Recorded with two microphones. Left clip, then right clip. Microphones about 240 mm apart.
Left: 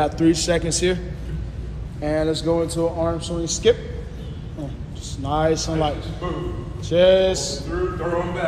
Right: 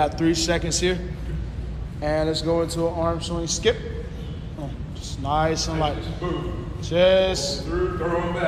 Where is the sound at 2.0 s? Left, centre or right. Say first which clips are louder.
Left 1 dB; right.